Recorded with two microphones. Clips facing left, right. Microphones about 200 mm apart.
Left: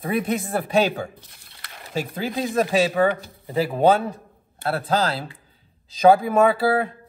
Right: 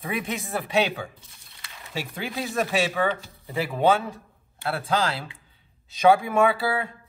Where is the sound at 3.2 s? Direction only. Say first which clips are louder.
Left 5 dB; 45° left (ahead or behind).